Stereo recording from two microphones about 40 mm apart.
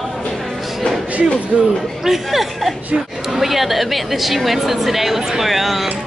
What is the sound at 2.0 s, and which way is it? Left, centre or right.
A woman's voice, centre.